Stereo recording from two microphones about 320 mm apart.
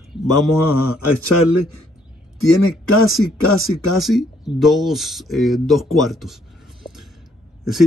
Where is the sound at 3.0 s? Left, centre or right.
Centre.